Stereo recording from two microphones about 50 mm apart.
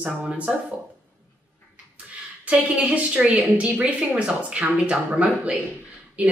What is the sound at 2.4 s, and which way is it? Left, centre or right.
Speech, right.